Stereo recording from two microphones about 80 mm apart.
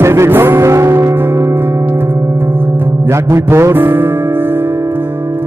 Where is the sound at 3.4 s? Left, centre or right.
Right.